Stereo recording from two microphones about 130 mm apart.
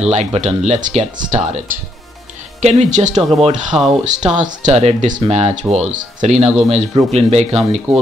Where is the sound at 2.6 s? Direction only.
60° right (ahead or behind).